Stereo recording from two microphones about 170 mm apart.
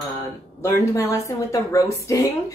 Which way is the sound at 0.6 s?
15° left (ahead or behind).